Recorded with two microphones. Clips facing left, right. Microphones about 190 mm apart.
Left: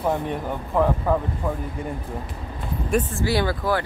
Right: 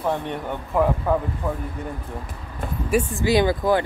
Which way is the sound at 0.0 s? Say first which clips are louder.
Left 1 dB; centre (ahead or behind).